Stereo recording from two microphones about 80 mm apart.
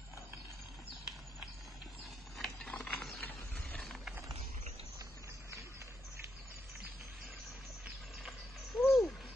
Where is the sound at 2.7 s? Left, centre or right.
Centre.